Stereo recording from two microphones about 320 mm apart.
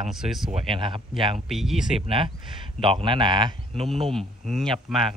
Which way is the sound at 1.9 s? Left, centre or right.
Centre.